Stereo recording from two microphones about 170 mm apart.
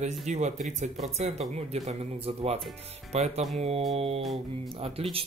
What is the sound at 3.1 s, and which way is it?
Speech, 40° right (ahead or behind).